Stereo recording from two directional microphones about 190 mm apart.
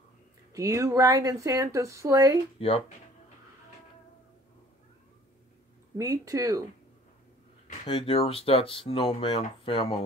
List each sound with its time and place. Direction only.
0.5 s speech: 15° right (ahead or behind)
2.6 s speech: 30° left (ahead or behind)
5.9 s speech: 15° right (ahead or behind)
7.9 s speech: 30° left (ahead or behind)